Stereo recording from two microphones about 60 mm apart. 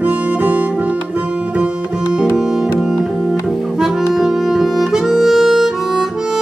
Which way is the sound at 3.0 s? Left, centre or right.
Centre.